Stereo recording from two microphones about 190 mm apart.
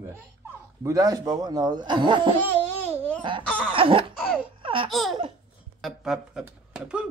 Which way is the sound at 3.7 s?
25° right (ahead or behind).